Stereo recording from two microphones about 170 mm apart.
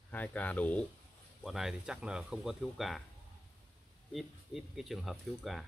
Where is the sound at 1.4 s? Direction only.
Centre (ahead or behind).